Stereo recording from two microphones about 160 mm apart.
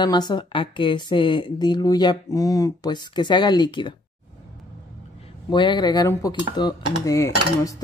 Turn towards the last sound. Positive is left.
turn(degrees=20)  # may be behind; listen again after turning